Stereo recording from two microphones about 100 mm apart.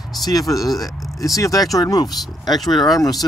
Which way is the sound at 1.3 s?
35° left (ahead or behind).